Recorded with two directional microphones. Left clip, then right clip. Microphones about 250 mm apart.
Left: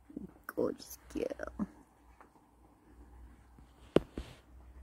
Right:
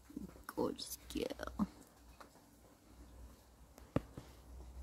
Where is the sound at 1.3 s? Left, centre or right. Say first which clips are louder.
Left 2 dB; right.